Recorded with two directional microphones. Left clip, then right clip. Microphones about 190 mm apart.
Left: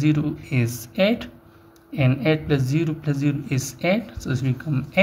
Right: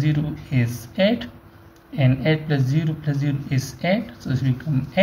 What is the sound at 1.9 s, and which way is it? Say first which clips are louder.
Speech: even; 40° left (ahead or behind).